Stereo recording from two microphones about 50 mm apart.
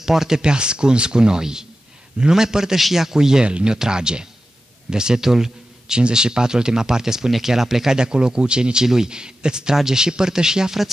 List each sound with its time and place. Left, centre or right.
0.0 s speech: centre
3.4 s speech: right